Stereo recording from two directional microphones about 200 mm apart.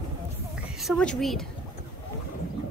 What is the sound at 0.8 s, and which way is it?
Speech, centre (ahead or behind).